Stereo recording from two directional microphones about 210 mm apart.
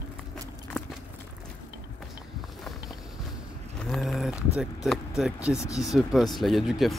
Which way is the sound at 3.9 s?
Centre (ahead or behind).